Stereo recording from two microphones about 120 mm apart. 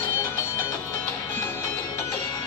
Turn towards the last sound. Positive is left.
turn(degrees=25)  # may be behind; listen again after turning